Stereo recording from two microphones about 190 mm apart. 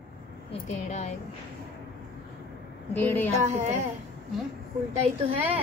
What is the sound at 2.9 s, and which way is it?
Speech, 10° left (ahead or behind).